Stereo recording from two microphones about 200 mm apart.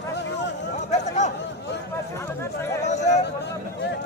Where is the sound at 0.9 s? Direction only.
35° left (ahead or behind).